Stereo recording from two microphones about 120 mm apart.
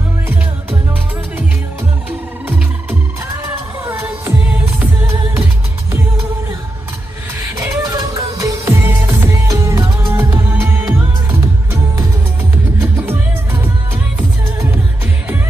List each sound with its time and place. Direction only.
2.4 s music: 15° right (ahead or behind)
7.5 s music: 25° right (ahead or behind)
12.8 s music: 20° right (ahead or behind)